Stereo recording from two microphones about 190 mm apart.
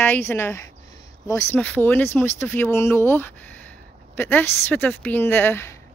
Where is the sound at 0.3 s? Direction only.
15° left (ahead or behind).